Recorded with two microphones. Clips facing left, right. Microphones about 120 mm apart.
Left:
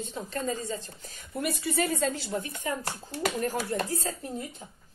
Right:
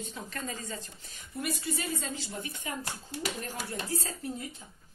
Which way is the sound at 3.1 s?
45° left (ahead or behind).